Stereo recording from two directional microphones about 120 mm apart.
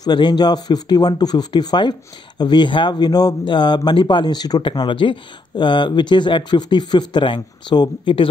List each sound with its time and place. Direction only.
0.0 s speech: 40° left (ahead or behind)